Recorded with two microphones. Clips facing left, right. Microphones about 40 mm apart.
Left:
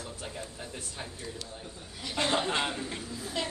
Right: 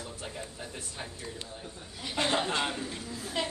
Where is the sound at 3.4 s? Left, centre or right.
Centre.